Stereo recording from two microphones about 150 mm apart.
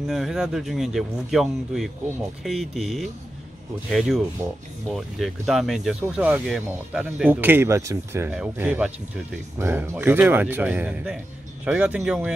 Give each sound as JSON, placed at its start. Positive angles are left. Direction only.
{"t": 0.0, "sound": "speech", "side_deg": 0}